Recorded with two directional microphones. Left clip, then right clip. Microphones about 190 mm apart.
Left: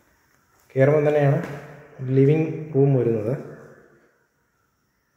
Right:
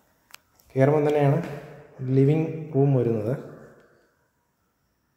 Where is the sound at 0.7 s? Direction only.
15° right (ahead or behind).